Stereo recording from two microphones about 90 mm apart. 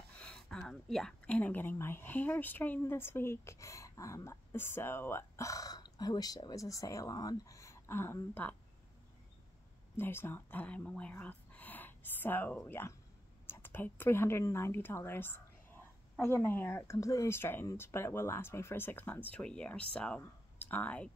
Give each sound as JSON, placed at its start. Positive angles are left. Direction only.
{"t": 0.2, "sound": "speech", "side_deg": 10}
{"t": 9.9, "sound": "a woman's voice", "side_deg": 25}